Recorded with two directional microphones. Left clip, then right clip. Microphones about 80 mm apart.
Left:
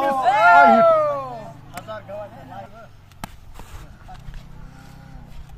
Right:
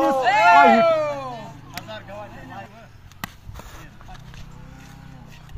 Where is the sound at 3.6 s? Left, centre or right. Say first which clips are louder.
Right 2 dB; right.